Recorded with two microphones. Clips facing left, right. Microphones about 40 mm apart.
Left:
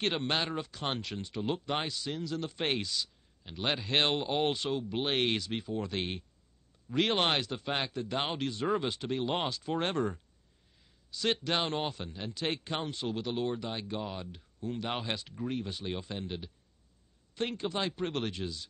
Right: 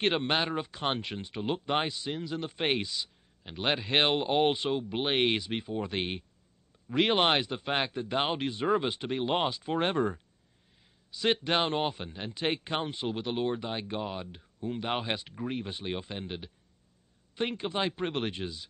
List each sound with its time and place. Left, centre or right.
0.0 s a man's voice: centre